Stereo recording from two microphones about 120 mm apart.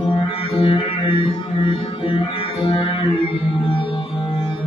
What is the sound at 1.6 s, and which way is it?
Music, 45° left (ahead or behind).